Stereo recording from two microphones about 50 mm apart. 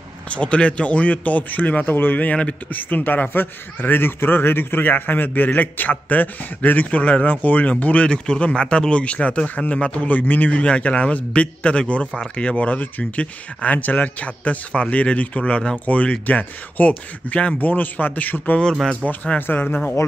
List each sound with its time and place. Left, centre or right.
0.3 s a man's voice: left
10.1 s a man's voice: left